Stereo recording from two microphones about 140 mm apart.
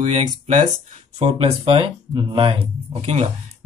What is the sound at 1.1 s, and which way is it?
Speech, 45° right (ahead or behind).